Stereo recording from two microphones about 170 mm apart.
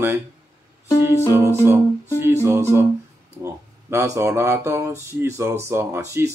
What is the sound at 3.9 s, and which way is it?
Speech, 15° right (ahead or behind).